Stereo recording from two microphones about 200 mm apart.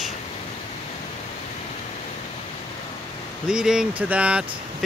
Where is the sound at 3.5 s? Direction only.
5° right (ahead or behind).